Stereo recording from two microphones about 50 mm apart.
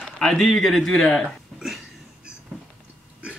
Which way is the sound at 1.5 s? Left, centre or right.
Centre.